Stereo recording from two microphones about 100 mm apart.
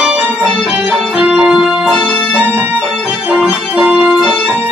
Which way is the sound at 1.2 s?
10° right (ahead or behind).